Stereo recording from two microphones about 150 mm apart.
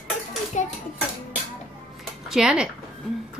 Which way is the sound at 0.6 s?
55° left (ahead or behind).